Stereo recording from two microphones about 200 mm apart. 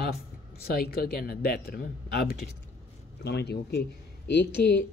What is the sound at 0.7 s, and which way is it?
Speech, 50° left (ahead or behind).